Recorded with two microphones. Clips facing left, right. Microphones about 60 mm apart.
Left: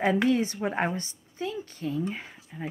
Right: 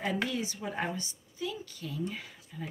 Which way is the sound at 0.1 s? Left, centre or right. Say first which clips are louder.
Left 9 dB; left.